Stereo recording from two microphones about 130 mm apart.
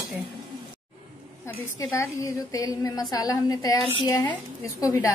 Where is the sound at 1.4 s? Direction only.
20° left (ahead or behind).